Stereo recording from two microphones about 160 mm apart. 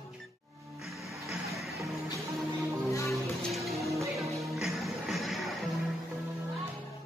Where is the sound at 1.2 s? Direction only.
Centre (ahead or behind).